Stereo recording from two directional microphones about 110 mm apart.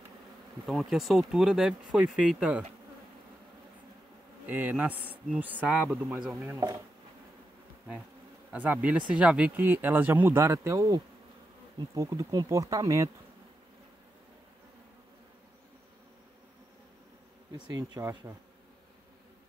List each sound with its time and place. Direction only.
0.7 s speech: centre (ahead or behind)
4.5 s speech: 15° right (ahead or behind)
8.5 s speech: 15° right (ahead or behind); by 13.1 s 30° right (ahead or behind)
17.5 s bee: 40° right (ahead or behind)